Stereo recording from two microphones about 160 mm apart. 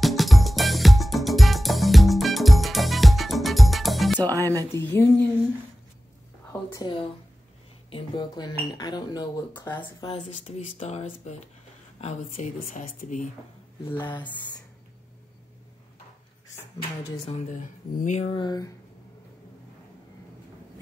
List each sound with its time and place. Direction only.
0.0 s music: centre (ahead or behind)
4.3 s speech: 15° left (ahead or behind)
6.7 s speech: 30° left (ahead or behind)
9.6 s speech: 10° left (ahead or behind)
9.9 s speech: 30° left (ahead or behind)
10.4 s speech: 45° left (ahead or behind)
13.8 s speech: 30° left (ahead or behind)
16.4 s speech: 20° left (ahead or behind)
17.2 s speech: 45° left (ahead or behind)
18.2 s speech: 30° left (ahead or behind)